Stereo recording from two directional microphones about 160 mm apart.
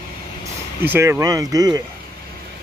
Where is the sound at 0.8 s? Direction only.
10° right (ahead or behind).